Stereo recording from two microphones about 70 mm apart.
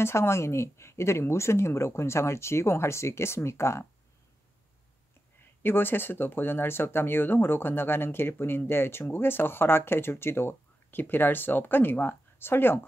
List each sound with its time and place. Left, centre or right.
0.0 s speech: left
5.6 s speech: left